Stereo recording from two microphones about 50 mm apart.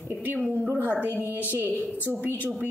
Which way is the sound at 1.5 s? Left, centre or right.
Right.